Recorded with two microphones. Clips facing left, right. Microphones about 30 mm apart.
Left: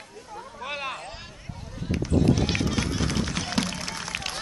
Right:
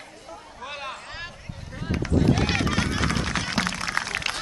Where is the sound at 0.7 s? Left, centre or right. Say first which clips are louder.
Left 2 dB; centre.